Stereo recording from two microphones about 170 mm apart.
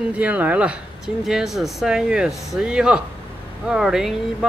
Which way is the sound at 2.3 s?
20° left (ahead or behind).